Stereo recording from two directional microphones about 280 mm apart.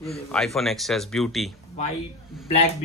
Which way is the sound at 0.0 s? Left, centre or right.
Centre.